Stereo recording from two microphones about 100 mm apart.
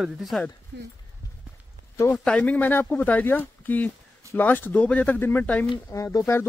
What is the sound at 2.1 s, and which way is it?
Speech, 10° left (ahead or behind).